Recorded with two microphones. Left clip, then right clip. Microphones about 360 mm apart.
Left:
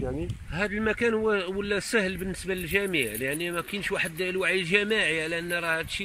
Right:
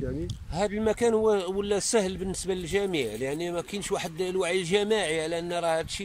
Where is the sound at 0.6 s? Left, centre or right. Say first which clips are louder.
Right 1 dB; centre.